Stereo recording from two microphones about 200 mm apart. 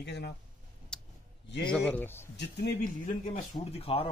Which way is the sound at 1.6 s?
5° left (ahead or behind).